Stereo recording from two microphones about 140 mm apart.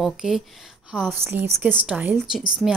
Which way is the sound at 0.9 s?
15° right (ahead or behind).